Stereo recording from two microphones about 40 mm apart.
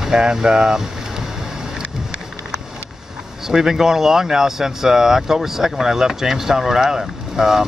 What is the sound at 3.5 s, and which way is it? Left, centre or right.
Speech, centre.